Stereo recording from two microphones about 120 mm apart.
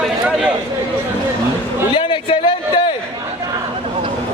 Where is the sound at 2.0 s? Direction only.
45° left (ahead or behind).